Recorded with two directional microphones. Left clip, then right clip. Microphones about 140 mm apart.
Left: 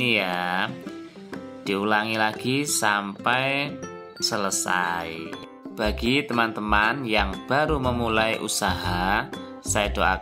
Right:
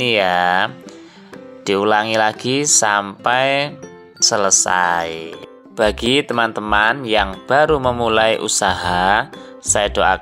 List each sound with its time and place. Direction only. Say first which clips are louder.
0.0 s speech: right 9 dB; 40° right (ahead or behind)
1.7 s speech: right 8 dB; 40° right (ahead or behind)